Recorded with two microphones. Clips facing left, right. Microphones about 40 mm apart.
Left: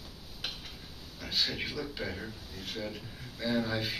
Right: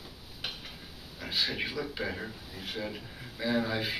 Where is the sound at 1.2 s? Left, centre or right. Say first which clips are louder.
Right 1 dB; centre.